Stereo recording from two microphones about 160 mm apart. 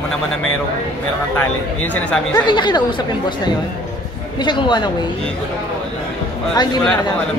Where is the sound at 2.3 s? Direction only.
30° left (ahead or behind).